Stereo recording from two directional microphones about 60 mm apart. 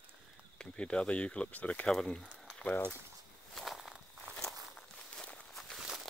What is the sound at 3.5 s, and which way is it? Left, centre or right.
Walk, centre.